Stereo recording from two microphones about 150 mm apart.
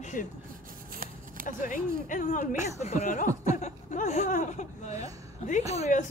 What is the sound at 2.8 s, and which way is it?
A man's voice, 50° left (ahead or behind).